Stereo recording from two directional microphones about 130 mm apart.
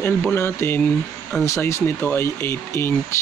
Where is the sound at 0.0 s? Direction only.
15° left (ahead or behind).